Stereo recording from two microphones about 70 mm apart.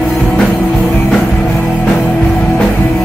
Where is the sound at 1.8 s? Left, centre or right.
Left.